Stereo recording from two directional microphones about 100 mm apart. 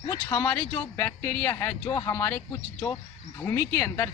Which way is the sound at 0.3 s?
25° left (ahead or behind).